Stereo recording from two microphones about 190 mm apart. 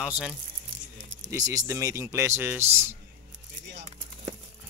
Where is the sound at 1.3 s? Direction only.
20° right (ahead or behind).